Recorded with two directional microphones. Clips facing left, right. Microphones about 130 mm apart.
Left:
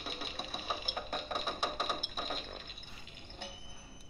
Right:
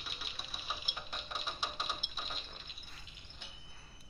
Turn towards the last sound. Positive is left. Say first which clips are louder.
# left 9 dB
turn(degrees=55)  # may be behind; listen again after turning